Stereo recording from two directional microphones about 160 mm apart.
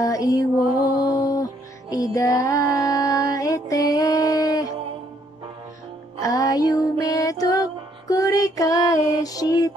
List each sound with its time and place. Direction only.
0.0 s music: 20° left (ahead or behind)
6.2 s music: 20° left (ahead or behind)